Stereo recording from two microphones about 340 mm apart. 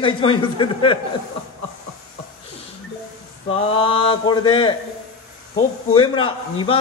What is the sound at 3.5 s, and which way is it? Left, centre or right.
A man's voice, centre.